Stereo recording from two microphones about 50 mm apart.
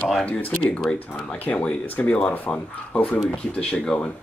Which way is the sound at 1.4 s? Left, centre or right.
Left.